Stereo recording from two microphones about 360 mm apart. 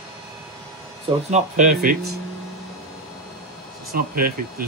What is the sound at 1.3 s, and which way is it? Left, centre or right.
Speech, right.